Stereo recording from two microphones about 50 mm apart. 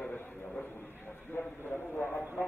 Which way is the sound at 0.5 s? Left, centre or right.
Left.